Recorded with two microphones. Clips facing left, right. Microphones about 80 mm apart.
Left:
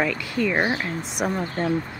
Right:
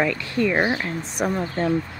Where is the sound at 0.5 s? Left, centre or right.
Centre.